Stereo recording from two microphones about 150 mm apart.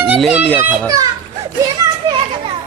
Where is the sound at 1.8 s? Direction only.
25° right (ahead or behind).